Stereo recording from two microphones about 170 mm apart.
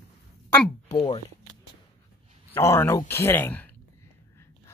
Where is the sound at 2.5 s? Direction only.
15° left (ahead or behind).